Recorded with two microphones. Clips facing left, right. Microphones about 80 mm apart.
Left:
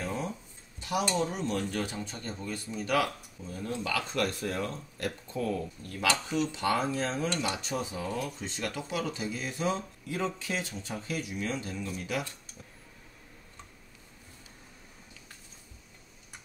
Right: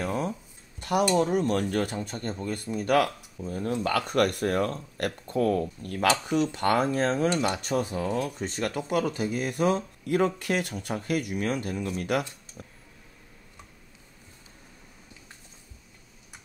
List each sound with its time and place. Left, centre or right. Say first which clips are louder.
0.0 s a sound: right 5 dB; right
0.7 s dishes: right 6 dB; right
1.1 s speech: right 7 dB; right